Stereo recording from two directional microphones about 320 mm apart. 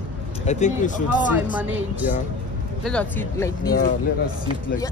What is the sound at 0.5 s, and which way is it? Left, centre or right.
Speech, left.